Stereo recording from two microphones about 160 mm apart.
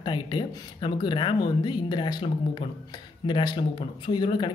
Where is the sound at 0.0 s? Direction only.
30° left (ahead or behind).